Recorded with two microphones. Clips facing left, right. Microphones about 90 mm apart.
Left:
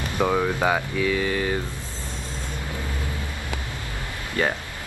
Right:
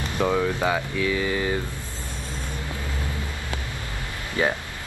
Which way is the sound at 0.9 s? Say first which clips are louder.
Left 1 dB; centre (ahead or behind).